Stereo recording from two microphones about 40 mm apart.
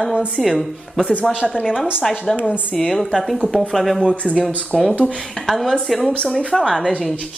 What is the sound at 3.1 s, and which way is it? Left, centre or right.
A woman's voice, centre.